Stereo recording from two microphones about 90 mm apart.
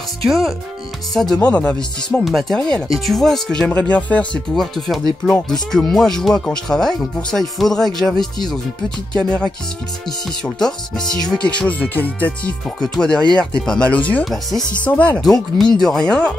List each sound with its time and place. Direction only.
0.3 s speech: centre (ahead or behind)
1.4 s speech: 15° left (ahead or behind)
3.6 s speech: 15° left (ahead or behind)
4.6 s speech: centre (ahead or behind)
14.2 s speech: centre (ahead or behind)
14.9 s speech: 15° left (ahead or behind)
15.2 s speech: 5° left (ahead or behind)